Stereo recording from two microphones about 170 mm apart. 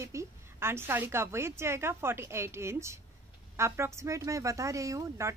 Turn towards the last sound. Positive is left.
turn(degrees=-20)  # may be behind; listen again after turning